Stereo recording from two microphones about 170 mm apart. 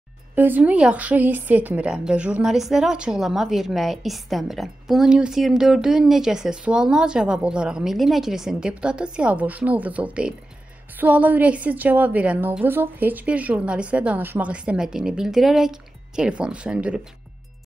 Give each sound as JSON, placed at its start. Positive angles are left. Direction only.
{"t": 0.4, "sound": "a woman's voice", "side_deg": -10}